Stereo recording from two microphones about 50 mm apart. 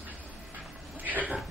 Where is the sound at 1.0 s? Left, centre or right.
Right.